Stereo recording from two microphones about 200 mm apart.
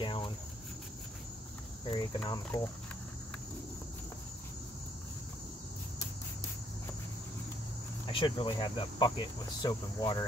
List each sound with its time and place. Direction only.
0.0 s cricket: 25° left (ahead or behind)
1.9 s speech: 25° left (ahead or behind)
8.1 s speech: 25° left (ahead or behind)